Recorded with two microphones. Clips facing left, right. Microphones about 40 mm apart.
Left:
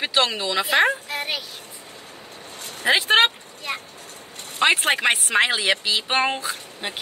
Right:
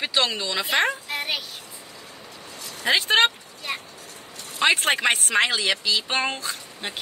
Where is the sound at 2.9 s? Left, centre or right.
Centre.